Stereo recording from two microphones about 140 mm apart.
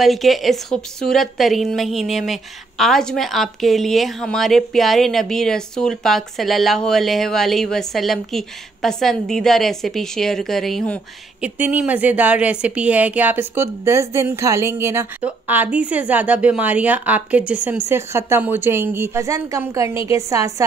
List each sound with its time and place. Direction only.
0.0 s a woman's voice: centre (ahead or behind)
11.4 s a woman's voice: 10° right (ahead or behind)